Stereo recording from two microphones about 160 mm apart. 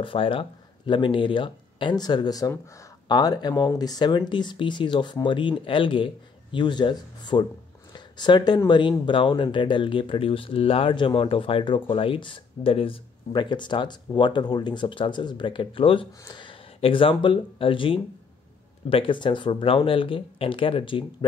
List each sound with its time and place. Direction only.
0.0 s speech: 35° left (ahead or behind)